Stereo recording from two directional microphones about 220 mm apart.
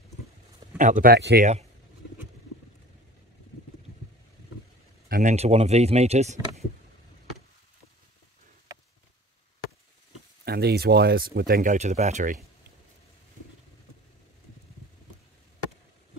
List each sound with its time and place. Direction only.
0.7 s speech: 35° right (ahead or behind)
5.0 s speech: 35° right (ahead or behind)
10.4 s speech: 45° right (ahead or behind)